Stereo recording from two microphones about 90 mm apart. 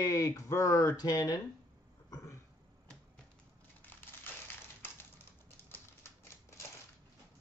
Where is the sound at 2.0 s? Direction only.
35° left (ahead or behind).